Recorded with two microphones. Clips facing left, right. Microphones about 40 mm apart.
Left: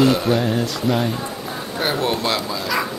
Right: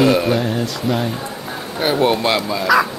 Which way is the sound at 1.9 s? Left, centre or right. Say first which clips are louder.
Right 8 dB; right.